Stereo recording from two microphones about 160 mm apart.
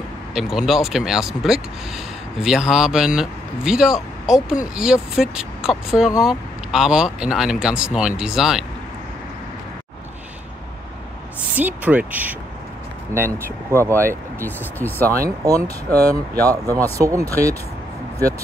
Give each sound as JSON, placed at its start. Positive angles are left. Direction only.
{"t": 0.3, "sound": "speech", "side_deg": 0}
{"t": 11.5, "sound": "speech", "side_deg": -10}
{"t": 13.9, "sound": "speech", "side_deg": 10}
{"t": 15.4, "sound": "speech", "side_deg": -20}